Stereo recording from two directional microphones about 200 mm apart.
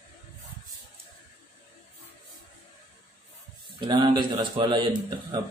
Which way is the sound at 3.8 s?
25° right (ahead or behind).